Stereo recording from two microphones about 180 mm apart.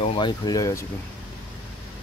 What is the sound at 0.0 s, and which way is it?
Speech, 25° left (ahead or behind).